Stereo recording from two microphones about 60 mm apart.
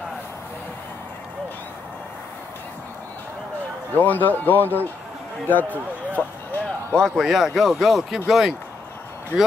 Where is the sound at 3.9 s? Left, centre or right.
Left.